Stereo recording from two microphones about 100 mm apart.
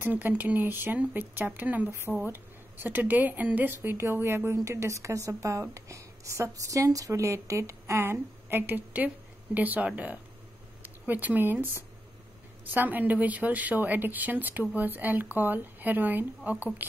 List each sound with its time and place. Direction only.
0.0 s a woman's voice: 20° right (ahead or behind)